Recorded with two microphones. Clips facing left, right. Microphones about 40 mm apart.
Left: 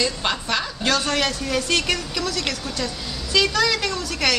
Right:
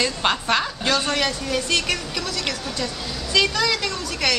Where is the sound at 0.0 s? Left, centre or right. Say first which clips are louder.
Right 2 dB; right.